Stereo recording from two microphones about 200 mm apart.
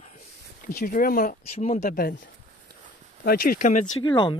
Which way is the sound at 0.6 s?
45° left (ahead or behind).